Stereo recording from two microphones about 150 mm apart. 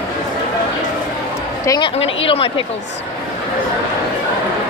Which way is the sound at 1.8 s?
40° left (ahead or behind).